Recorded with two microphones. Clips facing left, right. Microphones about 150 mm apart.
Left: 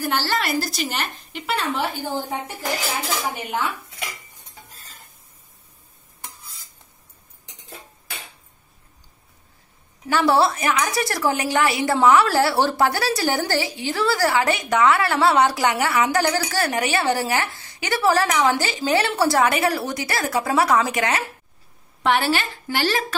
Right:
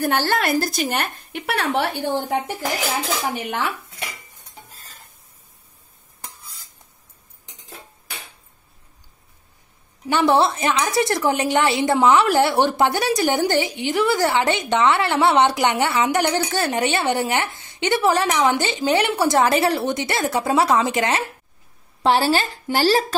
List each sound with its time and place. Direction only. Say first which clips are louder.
0.0 s a woman's voice: right 3 dB; 55° right (ahead or behind)
3.4 s speech: right 1 dB; 90° right
10.0 s a woman's voice: right 1 dB; 20° right (ahead or behind)
19.4 s a woman's voice: right 2 dB; 30° right (ahead or behind)
22.0 s a woman's voice: right 3 dB; 35° right (ahead or behind)